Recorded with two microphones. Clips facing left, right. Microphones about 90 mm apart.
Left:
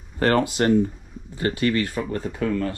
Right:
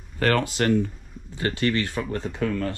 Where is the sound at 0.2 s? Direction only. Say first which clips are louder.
Left 3 dB; 25° left (ahead or behind).